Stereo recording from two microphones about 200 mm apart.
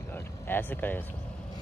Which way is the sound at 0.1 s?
10° left (ahead or behind).